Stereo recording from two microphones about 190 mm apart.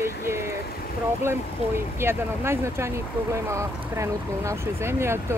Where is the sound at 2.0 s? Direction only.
15° right (ahead or behind).